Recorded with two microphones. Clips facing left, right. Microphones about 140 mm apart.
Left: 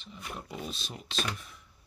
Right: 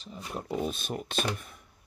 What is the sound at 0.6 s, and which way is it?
Speech, 50° right (ahead or behind).